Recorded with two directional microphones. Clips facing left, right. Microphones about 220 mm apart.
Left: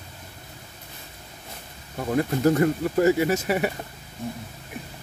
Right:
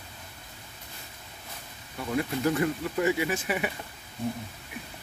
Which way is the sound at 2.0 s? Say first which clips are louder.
Left 5 dB; 45° left (ahead or behind).